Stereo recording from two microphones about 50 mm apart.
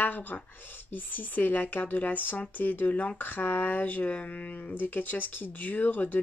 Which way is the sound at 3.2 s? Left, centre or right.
Left.